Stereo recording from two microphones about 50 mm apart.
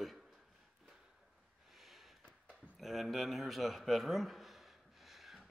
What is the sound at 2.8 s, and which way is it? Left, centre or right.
A man's voice, centre.